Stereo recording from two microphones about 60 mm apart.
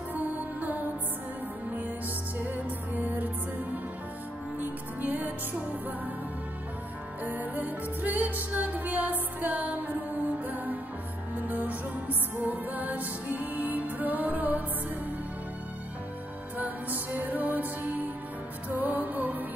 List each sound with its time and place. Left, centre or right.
0.1 s music: right
2.3 s music: right
7.2 s music: right
16.5 s music: right